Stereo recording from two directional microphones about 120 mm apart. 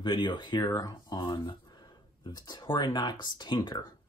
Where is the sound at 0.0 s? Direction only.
40° left (ahead or behind).